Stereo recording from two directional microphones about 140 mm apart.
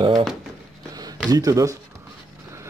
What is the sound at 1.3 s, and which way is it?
Speech, 25° right (ahead or behind).